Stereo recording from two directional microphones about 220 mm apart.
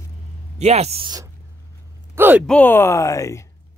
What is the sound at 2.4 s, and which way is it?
Speech, 5° left (ahead or behind).